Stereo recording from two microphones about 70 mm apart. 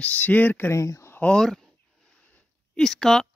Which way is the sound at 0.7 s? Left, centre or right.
Left.